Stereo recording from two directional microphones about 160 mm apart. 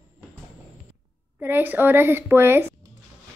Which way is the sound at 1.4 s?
10° right (ahead or behind).